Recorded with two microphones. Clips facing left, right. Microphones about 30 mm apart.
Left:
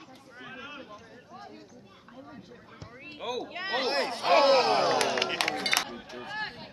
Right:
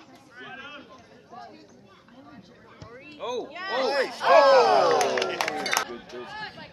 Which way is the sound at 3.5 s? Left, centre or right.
Centre.